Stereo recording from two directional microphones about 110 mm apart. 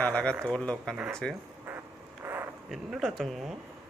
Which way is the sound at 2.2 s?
20° right (ahead or behind).